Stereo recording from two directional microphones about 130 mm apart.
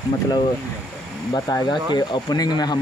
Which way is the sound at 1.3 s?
35° left (ahead or behind).